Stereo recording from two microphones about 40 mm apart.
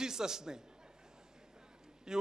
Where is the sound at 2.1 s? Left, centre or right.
Centre.